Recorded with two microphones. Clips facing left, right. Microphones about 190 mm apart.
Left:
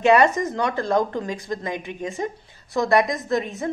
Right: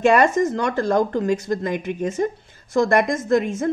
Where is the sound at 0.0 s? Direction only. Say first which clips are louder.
Right 1 dB; 45° right (ahead or behind).